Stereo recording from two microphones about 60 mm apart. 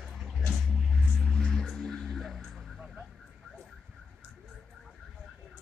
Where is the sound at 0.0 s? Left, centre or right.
Centre.